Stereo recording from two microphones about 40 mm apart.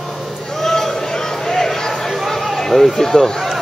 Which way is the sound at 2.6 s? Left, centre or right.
Centre.